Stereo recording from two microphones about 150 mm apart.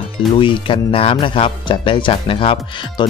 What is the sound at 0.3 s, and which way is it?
Speech, 35° left (ahead or behind).